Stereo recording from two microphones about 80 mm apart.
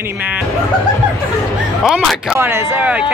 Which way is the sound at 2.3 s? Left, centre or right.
Right.